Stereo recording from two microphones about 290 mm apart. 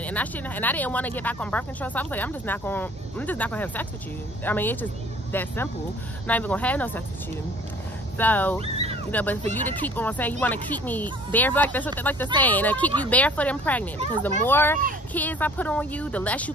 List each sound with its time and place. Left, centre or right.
0.0 s speech: centre
8.2 s speech: centre
8.5 s speech: right
9.1 s speech: centre